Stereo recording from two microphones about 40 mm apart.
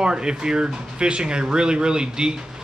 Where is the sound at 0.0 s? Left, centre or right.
Right.